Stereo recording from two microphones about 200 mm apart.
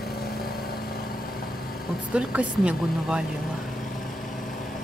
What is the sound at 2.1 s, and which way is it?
Speech, 5° right (ahead or behind).